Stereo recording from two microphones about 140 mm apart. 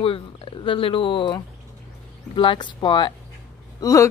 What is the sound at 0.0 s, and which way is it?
Speech, 40° left (ahead or behind).